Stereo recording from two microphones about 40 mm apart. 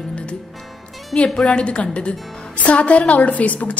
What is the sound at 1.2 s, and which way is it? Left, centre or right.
A woman's voice, left.